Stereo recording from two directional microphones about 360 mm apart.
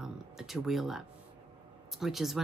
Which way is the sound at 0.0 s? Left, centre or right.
Centre.